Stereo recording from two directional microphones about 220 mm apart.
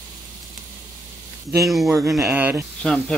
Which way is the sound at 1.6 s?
Centre (ahead or behind).